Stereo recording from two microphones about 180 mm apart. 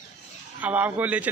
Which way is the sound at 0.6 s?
10° right (ahead or behind).